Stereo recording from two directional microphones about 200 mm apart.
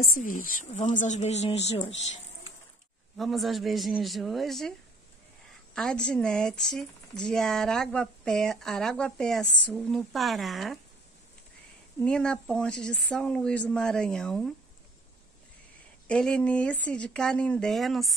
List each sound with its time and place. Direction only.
0.0 s speech: 45° left (ahead or behind)
3.2 s speech: centre (ahead or behind)
5.8 s speech: 5° left (ahead or behind)
12.0 s speech: 5° left (ahead or behind)
16.1 s speech: 5° left (ahead or behind)